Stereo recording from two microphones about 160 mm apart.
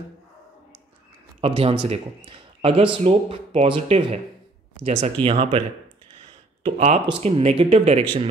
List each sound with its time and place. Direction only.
1.4 s speech: 35° right (ahead or behind)
6.6 s speech: 45° right (ahead or behind)